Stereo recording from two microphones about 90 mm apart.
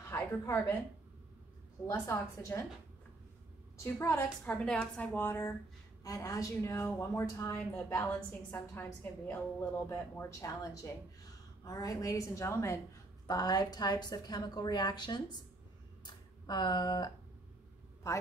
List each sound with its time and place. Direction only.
0.1 s a woman's voice: 30° left (ahead or behind)
1.9 s a woman's voice: 30° left (ahead or behind)
3.7 s a woman's voice: 35° left (ahead or behind)
4.5 s a woman's voice: 15° left (ahead or behind)
5.2 s a woman's voice: 30° left (ahead or behind)
6.0 s a woman's voice: 40° left (ahead or behind)
8.0 s a woman's voice: 20° left (ahead or behind)
9.8 s a woman's voice: 40° left (ahead or behind)
13.3 s a woman's voice: 45° left (ahead or behind)